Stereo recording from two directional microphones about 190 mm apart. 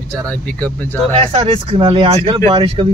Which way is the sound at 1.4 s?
25° right (ahead or behind).